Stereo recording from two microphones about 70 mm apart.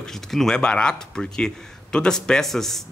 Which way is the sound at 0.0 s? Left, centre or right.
Centre.